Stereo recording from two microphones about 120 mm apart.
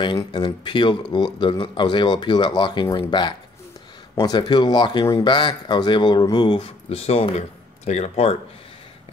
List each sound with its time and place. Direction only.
0.0 s speech: 40° left (ahead or behind); by 8.4 s 65° left (ahead or behind)